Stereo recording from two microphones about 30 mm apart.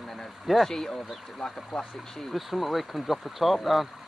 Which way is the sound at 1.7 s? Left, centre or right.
Centre.